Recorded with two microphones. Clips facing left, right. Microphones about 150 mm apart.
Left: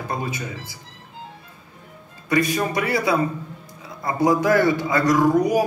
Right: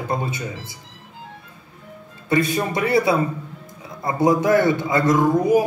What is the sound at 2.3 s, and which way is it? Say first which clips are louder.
A man's voice: right 1 dB; 25° right (ahead or behind).